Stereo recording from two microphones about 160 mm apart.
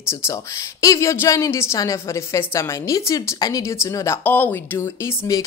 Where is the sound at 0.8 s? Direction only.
20° left (ahead or behind).